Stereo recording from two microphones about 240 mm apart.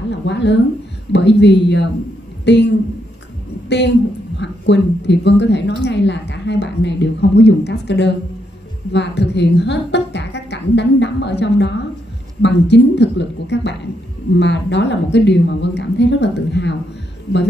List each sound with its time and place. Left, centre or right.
0.1 s a woman's voice: left